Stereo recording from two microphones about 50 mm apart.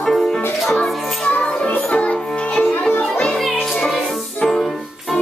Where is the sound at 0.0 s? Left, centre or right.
Centre.